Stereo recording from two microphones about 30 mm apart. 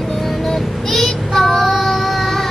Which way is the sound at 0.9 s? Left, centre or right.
Centre.